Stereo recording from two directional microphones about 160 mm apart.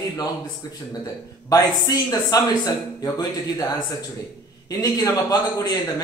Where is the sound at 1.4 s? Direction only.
20° left (ahead or behind).